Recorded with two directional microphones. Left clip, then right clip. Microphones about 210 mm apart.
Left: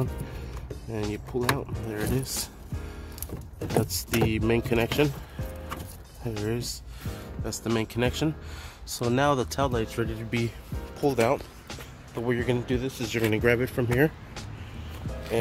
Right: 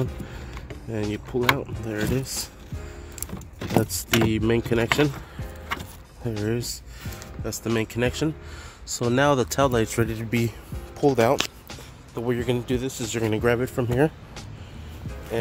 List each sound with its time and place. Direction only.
1.0 s speech: 5° right (ahead or behind)
3.8 s speech: 10° right (ahead or behind)
6.3 s speech: 5° right (ahead or behind); by 11.3 s 25° right (ahead or behind)
11.7 s speech: 5° right (ahead or behind)